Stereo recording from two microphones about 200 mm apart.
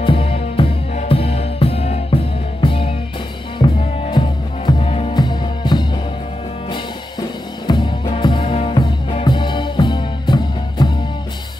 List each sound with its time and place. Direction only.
0.0 s music: 25° left (ahead or behind)
3.5 s drum: 25° left (ahead or behind)
4.6 s music: 30° left (ahead or behind)
7.6 s music: 20° left (ahead or behind)